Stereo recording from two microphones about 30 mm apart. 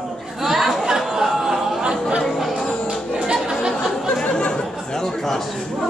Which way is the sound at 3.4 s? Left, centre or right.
Centre.